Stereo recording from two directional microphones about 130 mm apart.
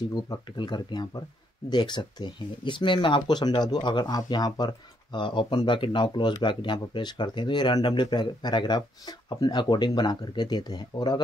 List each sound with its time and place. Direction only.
0.1 s speech: 35° left (ahead or behind)